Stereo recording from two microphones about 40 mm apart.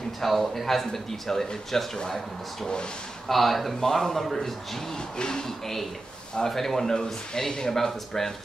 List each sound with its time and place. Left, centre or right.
0.2 s speech: centre
3.3 s speech: centre
4.9 s speech: centre